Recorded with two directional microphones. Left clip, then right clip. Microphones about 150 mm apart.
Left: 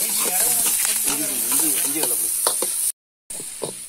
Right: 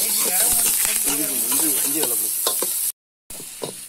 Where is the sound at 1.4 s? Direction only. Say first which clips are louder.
Left 1 dB; 25° right (ahead or behind).